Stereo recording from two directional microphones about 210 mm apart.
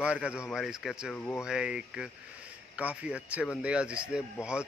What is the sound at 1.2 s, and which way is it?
Speech, 10° left (ahead or behind).